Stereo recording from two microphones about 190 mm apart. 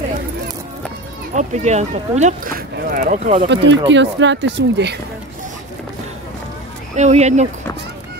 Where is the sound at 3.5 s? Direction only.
70° right (ahead or behind).